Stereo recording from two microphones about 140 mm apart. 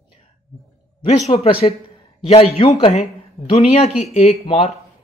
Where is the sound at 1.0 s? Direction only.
45° left (ahead or behind).